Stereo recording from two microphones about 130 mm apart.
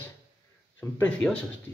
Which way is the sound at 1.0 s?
10° left (ahead or behind).